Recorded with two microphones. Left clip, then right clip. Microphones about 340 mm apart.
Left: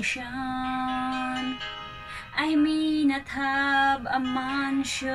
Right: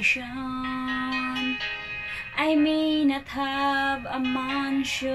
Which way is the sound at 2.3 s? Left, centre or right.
Centre.